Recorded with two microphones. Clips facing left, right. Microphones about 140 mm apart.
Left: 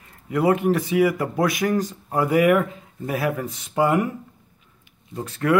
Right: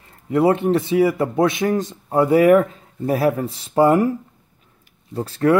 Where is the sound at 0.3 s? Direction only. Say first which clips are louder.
Right 3 dB; 25° right (ahead or behind).